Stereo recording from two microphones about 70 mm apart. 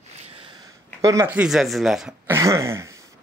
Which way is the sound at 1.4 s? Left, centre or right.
Centre.